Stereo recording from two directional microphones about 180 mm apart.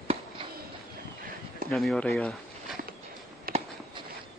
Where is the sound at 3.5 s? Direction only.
55° right (ahead or behind).